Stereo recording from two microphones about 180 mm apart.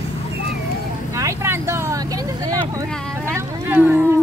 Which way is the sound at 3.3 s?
10° right (ahead or behind).